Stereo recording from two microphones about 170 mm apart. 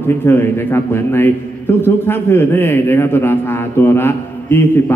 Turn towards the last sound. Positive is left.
turn(degrees=15)  # may be behind; listen again after turning